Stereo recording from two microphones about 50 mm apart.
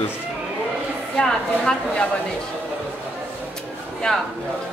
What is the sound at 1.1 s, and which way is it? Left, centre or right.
Speech, centre.